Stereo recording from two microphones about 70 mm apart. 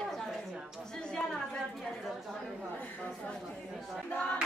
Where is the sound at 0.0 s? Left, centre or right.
Centre.